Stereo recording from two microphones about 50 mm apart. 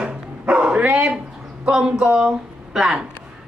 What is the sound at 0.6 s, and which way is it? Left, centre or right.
Dog, right.